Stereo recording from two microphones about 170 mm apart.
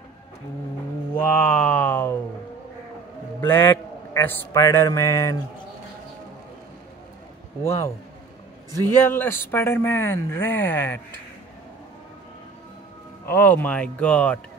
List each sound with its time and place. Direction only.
1.4 s a sound: 10° left (ahead or behind)
3.3 s a man's voice: 15° left (ahead or behind)
7.6 s speech: 15° left (ahead or behind)
13.2 s speech: 10° left (ahead or behind)